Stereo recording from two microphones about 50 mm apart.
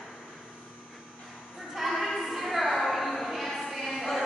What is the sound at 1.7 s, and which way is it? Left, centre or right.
Music, centre.